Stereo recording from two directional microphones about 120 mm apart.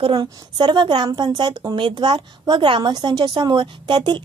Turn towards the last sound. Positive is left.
turn(degrees=-40)  # may be behind; listen again after turning